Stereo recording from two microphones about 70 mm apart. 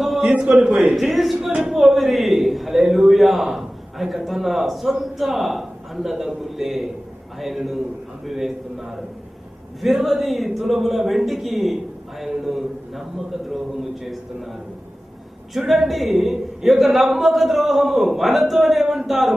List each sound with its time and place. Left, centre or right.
0.4 s a man's voice: centre
0.9 s a man's voice: centre
15.5 s a man's voice: centre